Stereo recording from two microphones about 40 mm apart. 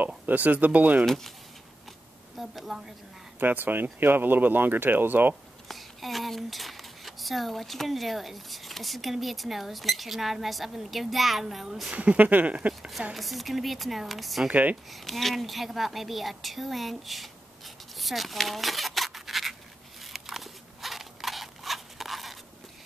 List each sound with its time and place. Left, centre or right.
0.0 s speech: right
1.0 s speech: centre
2.3 s a woman's voice: centre
3.3 s speech: right
5.7 s speech: centre
11.9 s speech: right
13.1 s speech: centre
14.5 s speech: right
14.9 s speech: centre
17.9 s a sound: centre